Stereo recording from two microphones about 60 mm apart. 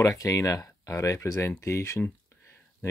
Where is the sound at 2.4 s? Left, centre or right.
Left.